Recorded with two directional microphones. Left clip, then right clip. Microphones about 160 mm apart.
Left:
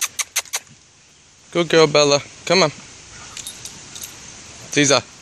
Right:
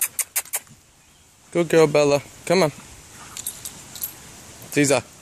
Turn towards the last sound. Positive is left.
turn(degrees=-15)  # may be behind; listen again after turning